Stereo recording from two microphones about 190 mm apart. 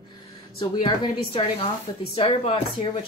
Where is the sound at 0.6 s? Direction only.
25° left (ahead or behind).